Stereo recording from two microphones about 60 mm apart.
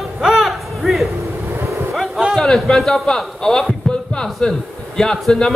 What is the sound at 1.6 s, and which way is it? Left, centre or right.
Vehicle, right.